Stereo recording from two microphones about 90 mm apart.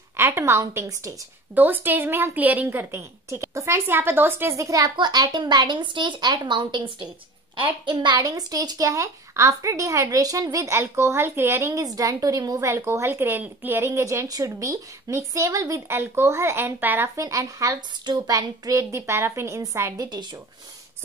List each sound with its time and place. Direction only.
0.2 s a woman's voice: 30° right (ahead or behind)
1.5 s a woman's voice: 20° right (ahead or behind)
4.6 s a woman's voice: 35° right (ahead or behind)
4.9 s speech: 55° right (ahead or behind)
8.3 s a woman's voice: 45° right (ahead or behind); by 17.1 s 25° right (ahead or behind)
17.2 s a woman's voice: 40° right (ahead or behind)
17.7 s a woman's voice: 55° right (ahead or behind); by 20.1 s 40° right (ahead or behind)